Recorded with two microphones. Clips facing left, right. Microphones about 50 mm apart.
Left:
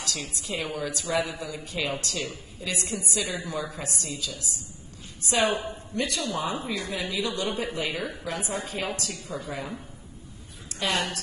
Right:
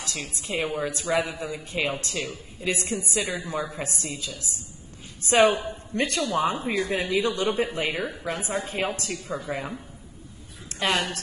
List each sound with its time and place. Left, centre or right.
0.0 s a woman's voice: right